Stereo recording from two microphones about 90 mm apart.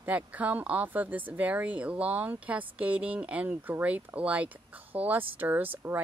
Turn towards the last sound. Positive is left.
turn(degrees=-20)  # may be behind; listen again after turning